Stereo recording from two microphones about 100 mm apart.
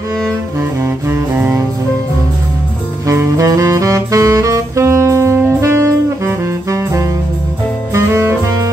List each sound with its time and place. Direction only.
0.8 s music: 25° right (ahead or behind)
3.1 s saxophone: 30° right (ahead or behind)